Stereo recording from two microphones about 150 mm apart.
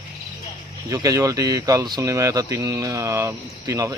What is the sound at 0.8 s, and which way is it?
Speech, 25° right (ahead or behind).